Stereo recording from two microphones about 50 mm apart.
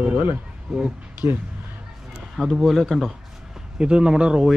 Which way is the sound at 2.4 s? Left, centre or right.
Centre.